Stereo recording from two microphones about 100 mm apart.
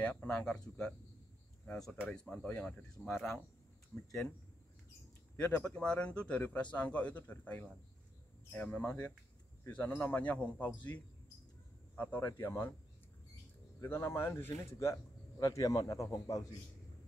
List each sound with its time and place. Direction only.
0.0 s speech: 15° left (ahead or behind)
5.6 s speech: 10° left (ahead or behind)
11.9 s cricket: 15° left (ahead or behind)
12.2 s speech: 25° left (ahead or behind)
13.7 s a man's voice: 25° left (ahead or behind)